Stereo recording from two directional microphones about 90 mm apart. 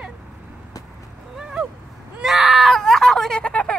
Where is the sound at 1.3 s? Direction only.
10° right (ahead or behind).